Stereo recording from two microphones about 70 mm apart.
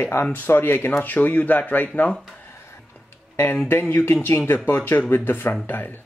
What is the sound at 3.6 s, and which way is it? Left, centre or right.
Speech, left.